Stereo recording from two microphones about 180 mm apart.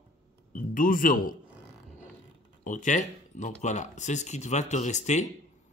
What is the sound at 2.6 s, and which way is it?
Speech, 45° left (ahead or behind).